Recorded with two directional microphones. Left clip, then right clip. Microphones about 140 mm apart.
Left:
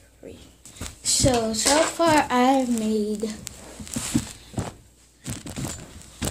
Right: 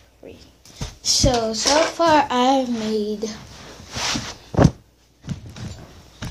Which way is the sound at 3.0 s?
5° left (ahead or behind).